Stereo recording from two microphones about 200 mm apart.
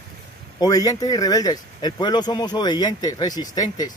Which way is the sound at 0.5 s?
20° left (ahead or behind).